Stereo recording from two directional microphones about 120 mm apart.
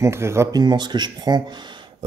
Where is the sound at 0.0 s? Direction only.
20° right (ahead or behind).